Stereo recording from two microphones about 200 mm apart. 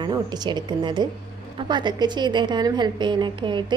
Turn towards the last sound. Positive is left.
turn(degrees=-25)  # may be behind; listen again after turning